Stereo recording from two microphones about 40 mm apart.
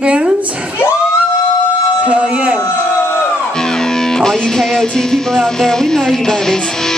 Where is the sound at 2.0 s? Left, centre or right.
Right.